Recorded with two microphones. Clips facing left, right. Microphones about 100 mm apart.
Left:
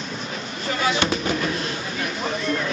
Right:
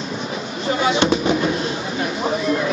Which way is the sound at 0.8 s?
25° right (ahead or behind).